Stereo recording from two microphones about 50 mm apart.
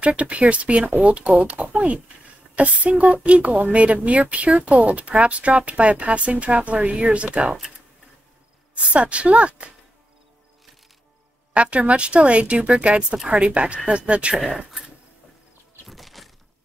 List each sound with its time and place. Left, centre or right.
0.0 s speech: right
8.7 s speech: right
11.5 s speech: right
14.3 s speech: centre
15.9 s a sound: centre